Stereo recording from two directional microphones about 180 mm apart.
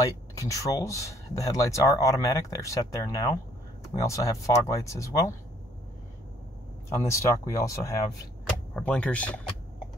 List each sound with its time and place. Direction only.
0.0 s speech: 20° left (ahead or behind)
7.0 s speech: 15° left (ahead or behind)
8.7 s speech: 5° left (ahead or behind)